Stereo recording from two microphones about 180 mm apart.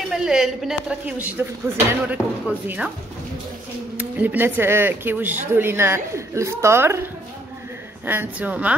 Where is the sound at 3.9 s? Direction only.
10° right (ahead or behind).